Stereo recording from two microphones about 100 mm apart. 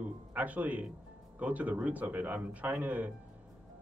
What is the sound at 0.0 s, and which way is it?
Speech, 15° right (ahead or behind).